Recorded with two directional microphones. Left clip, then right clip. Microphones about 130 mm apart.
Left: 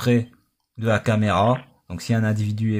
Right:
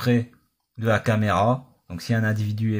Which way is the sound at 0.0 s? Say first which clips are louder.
Left 2 dB; 35° left (ahead or behind).